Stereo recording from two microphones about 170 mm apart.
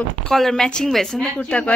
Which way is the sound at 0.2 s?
Centre (ahead or behind).